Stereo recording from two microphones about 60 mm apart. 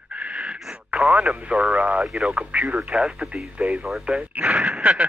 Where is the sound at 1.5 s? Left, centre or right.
Right.